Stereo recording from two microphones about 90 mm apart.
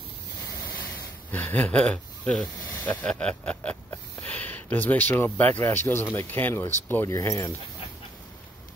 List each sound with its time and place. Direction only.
1.3 s speech: 20° left (ahead or behind)
3.1 s a sound: 10° left (ahead or behind)
4.2 s speech: 20° left (ahead or behind); by 7.5 s 35° left (ahead or behind)